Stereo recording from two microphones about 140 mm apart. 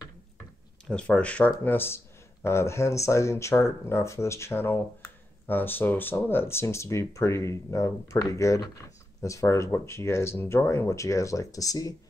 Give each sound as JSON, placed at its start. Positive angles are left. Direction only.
{"t": 0.8, "sound": "speech", "side_deg": 5}